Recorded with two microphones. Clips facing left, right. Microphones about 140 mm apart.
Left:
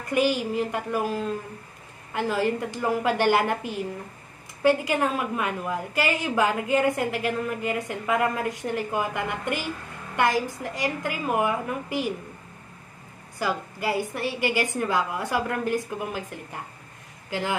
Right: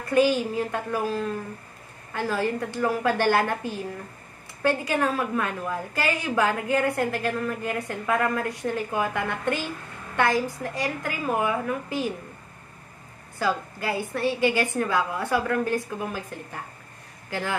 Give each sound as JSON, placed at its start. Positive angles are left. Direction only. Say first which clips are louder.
{"t": 0.1, "sound": "a woman's voice", "louder": "right 2 dB", "side_deg": 15}
{"t": 13.4, "sound": "a woman's voice", "louder": "right 1 dB", "side_deg": 15}